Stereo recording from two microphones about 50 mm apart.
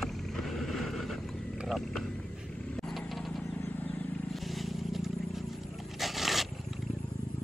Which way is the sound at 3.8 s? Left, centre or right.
Left.